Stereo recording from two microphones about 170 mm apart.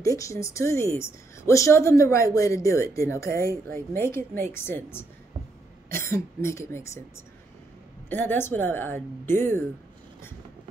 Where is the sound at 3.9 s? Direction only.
15° left (ahead or behind).